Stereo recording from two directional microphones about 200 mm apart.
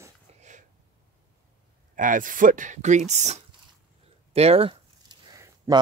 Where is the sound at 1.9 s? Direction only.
40° right (ahead or behind).